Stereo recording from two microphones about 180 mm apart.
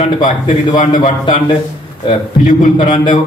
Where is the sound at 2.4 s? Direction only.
45° left (ahead or behind).